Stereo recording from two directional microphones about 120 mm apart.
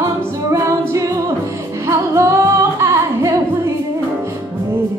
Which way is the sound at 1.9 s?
25° right (ahead or behind).